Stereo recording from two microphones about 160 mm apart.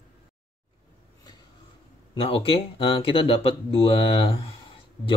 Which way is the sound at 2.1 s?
35° left (ahead or behind).